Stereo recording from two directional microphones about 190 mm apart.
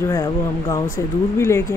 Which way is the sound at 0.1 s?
20° left (ahead or behind).